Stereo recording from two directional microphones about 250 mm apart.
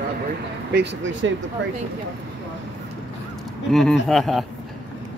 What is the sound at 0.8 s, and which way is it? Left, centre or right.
Speech, right.